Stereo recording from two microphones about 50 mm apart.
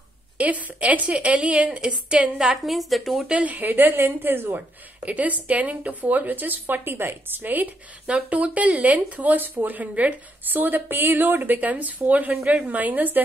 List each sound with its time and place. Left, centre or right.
0.4 s a woman's voice: right; by 3.3 s centre
3.3 s a woman's voice: right
8.3 s a woman's voice: right